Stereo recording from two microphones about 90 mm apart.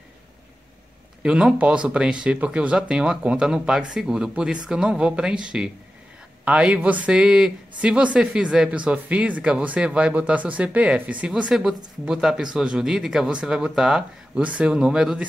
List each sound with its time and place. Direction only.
1.2 s speech: 10° right (ahead or behind)